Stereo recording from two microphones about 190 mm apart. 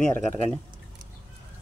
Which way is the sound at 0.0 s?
5° left (ahead or behind).